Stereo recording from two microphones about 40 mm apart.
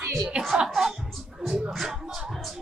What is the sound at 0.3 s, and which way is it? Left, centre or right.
Speech, right.